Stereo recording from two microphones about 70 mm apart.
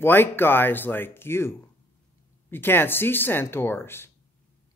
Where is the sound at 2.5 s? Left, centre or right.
Left.